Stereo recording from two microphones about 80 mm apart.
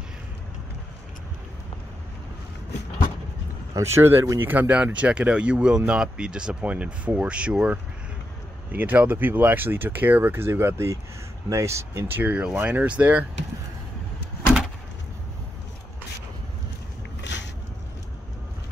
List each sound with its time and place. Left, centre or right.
3.7 s speech: right
12.2 s speech: right